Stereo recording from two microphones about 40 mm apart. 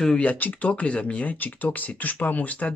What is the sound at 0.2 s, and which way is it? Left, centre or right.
Speech, left.